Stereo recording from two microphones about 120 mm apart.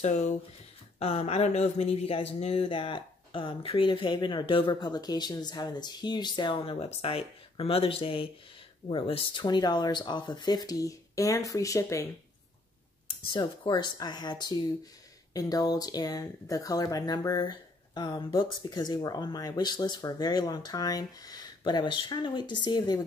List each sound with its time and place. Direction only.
0.0 s speech: 70° left (ahead or behind)
0.9 s speech: 55° left (ahead or behind); by 12.1 s 25° left (ahead or behind)
13.3 s speech: 40° left (ahead or behind)